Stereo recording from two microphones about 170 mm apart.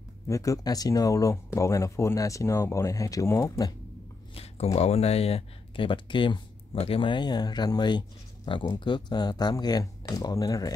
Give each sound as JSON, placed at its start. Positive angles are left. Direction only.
{"t": 0.3, "sound": "speech", "side_deg": 20}
{"t": 4.7, "sound": "speech", "side_deg": 40}